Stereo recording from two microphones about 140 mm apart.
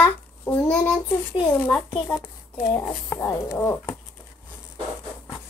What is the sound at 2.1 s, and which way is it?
Speech, 25° left (ahead or behind).